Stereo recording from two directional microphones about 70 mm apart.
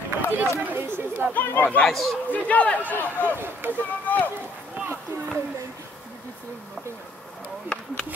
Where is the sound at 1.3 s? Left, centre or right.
Left.